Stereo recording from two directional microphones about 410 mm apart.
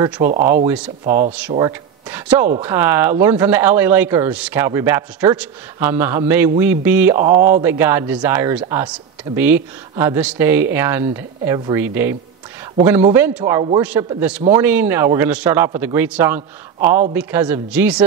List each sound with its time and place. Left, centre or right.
0.2 s speech: centre
0.7 s speech: centre